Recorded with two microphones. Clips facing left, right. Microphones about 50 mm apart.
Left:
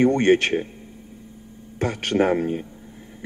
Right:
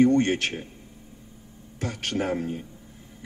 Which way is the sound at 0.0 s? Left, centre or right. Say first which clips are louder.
Left 3 dB; left.